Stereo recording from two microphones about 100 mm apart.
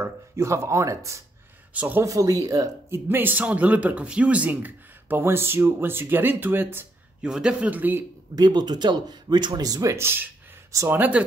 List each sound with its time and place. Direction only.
0.0 s speech: 30° right (ahead or behind)
1.7 s speech: 15° right (ahead or behind)
2.0 s speech: 35° right (ahead or behind)
3.1 s speech: 20° right (ahead or behind)
7.2 s a man's voice: 5° right (ahead or behind)
8.4 s a man's voice: 45° right (ahead or behind); by 11.2 s 15° right (ahead or behind)